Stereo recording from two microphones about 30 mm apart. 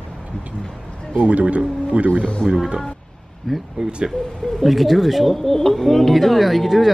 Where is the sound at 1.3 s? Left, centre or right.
Right.